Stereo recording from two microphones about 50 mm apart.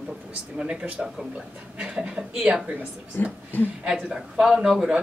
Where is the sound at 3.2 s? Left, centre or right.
Left.